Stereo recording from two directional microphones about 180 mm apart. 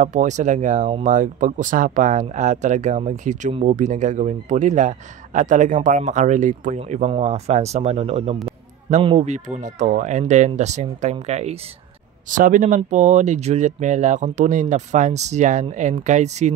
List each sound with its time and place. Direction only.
0.0 s speech: 40° right (ahead or behind)